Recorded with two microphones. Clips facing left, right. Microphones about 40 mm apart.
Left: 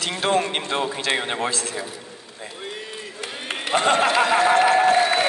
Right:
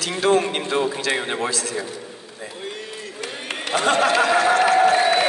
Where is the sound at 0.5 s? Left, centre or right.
Left.